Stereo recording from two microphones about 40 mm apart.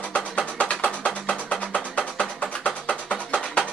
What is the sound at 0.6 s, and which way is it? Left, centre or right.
Music, left.